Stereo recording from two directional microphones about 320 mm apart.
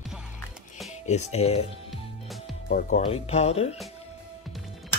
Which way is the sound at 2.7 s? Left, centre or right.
Left.